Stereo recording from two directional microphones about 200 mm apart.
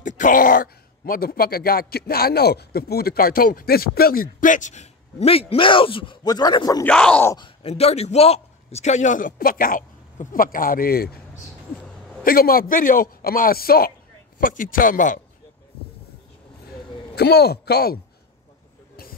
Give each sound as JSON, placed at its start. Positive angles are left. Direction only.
{"t": 0.0, "sound": "speech", "side_deg": 40}
{"t": 6.9, "sound": "speech", "side_deg": 5}
{"t": 7.3, "sound": "a man's voice", "side_deg": 25}
{"t": 12.3, "sound": "a man's voice", "side_deg": 45}
{"t": 17.1, "sound": "speech", "side_deg": 55}